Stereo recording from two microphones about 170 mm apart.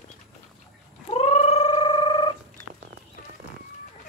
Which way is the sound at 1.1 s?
35° left (ahead or behind).